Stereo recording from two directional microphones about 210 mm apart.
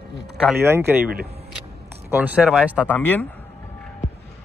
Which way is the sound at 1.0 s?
45° right (ahead or behind).